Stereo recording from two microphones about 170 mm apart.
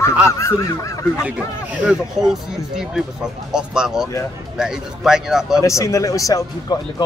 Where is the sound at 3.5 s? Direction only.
5° right (ahead or behind).